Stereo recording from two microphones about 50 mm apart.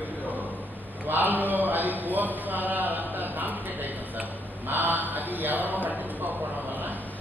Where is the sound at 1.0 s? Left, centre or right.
Right.